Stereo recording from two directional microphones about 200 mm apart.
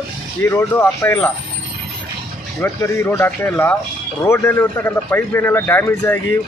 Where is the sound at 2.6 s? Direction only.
10° left (ahead or behind).